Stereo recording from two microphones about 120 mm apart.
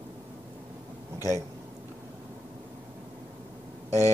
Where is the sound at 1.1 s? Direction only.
25° right (ahead or behind).